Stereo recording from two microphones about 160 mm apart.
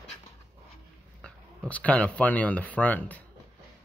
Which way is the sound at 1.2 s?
5° left (ahead or behind).